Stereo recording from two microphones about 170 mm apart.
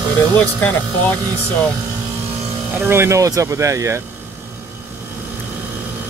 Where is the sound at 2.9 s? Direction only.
15° right (ahead or behind).